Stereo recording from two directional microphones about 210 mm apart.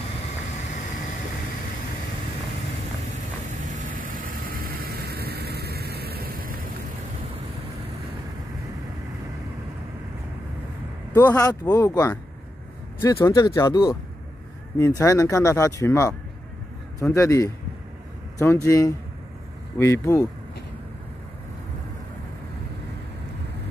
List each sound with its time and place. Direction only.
3.6 s vehicle: 40° right (ahead or behind)
11.1 s speech: 15° left (ahead or behind)